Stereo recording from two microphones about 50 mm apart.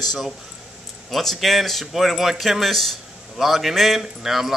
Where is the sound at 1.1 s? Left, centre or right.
Centre.